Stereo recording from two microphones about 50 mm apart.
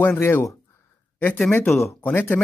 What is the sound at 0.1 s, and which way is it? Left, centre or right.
Speech, left.